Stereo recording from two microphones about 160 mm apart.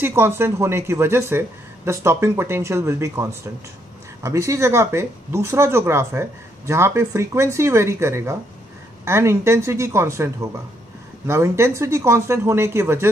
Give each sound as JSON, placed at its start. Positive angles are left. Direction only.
{"t": 0.0, "sound": "speech", "side_deg": -15}